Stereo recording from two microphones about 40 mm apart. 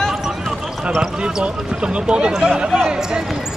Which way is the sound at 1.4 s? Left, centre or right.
Right.